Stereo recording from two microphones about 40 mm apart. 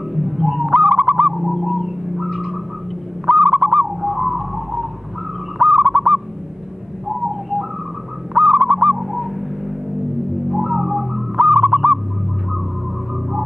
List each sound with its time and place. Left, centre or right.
0.1 s fowl: centre
0.7 s a sound: right
1.2 s bird: centre
1.5 s bird: centre
2.3 s a sound: centre
3.3 s owl: right
3.7 s bird: centre
8.4 s bird: centre
10.5 s music: centre
11.3 s bird: centre